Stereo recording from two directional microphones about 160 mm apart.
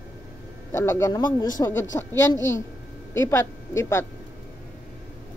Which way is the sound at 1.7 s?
15° left (ahead or behind).